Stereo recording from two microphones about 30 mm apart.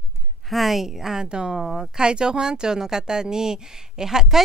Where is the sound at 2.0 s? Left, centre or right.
Right.